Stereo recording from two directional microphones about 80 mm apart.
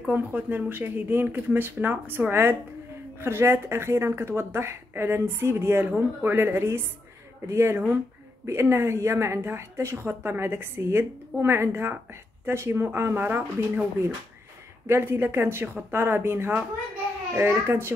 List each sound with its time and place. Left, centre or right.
0.1 s speech: right